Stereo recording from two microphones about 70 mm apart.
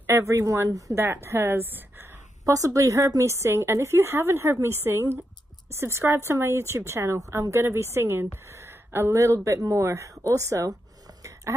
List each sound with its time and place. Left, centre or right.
0.0 s speech: right
0.9 s a woman's voice: right
2.4 s a woman's voice: right
11.5 s a woman's voice: right